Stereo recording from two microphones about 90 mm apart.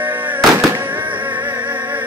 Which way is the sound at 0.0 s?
20° right (ahead or behind).